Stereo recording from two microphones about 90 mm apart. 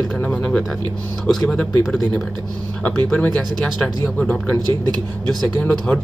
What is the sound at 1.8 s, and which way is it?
Speech, centre (ahead or behind).